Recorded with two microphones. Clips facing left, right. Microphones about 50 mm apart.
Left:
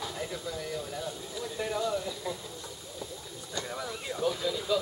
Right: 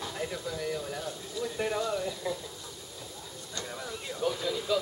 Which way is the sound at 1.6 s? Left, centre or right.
Centre.